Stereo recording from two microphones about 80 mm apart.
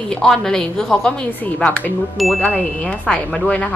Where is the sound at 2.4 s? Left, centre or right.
Centre.